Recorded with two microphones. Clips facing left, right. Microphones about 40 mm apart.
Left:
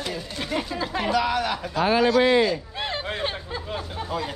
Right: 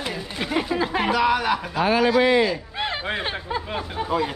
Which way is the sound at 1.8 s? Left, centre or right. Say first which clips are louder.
Even; right.